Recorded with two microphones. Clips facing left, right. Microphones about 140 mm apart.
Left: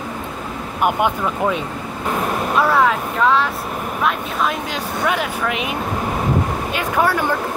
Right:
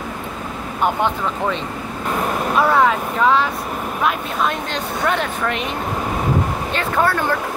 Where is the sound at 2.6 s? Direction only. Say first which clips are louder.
Right 1 dB; centre (ahead or behind).